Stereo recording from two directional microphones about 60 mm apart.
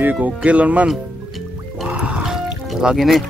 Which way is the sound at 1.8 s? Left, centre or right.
Centre.